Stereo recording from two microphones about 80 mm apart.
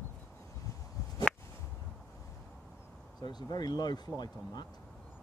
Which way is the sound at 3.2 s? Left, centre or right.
Left.